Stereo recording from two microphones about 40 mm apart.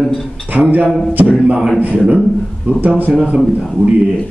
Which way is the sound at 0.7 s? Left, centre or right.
Right.